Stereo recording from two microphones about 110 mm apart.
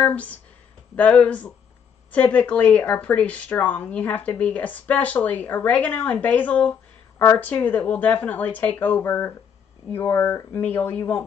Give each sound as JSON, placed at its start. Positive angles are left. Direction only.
{"t": 0.0, "sound": "speech", "side_deg": 15}